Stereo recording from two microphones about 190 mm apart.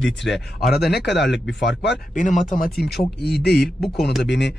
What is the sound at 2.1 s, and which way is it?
Speech, 45° left (ahead or behind).